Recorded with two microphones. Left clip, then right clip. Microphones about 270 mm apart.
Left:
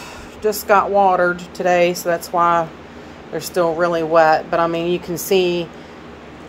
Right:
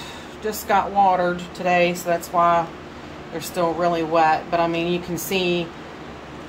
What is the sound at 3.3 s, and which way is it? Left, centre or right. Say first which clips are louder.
A woman's voice: left 5 dB; centre.